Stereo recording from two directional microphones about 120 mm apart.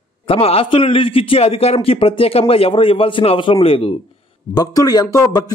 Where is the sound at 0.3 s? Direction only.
55° left (ahead or behind).